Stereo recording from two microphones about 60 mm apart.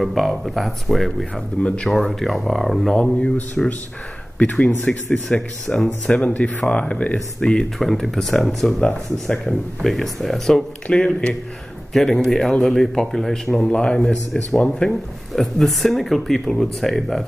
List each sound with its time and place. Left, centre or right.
0.0 s speech: centre
1.6 s speech: left
1.9 s speech: centre
7.8 s speech: centre
11.9 s speech: centre